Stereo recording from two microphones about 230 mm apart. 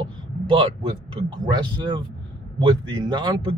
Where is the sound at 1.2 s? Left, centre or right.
Centre.